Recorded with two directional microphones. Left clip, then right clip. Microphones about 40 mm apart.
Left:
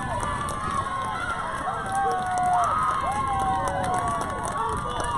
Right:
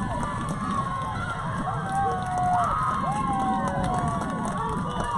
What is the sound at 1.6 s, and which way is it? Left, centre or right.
Crowd, left.